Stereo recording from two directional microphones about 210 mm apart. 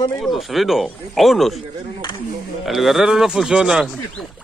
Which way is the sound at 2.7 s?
Centre (ahead or behind).